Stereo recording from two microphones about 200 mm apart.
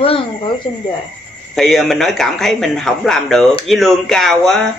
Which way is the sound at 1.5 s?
Centre (ahead or behind).